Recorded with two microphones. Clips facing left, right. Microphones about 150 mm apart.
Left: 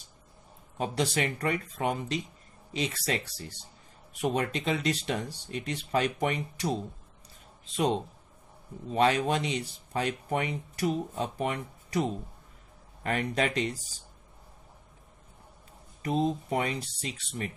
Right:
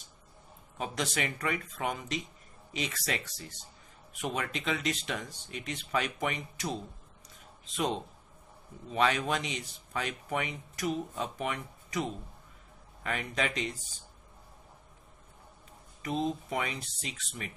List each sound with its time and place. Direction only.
0.7 s speech: 35° left (ahead or behind)
16.0 s speech: 35° left (ahead or behind)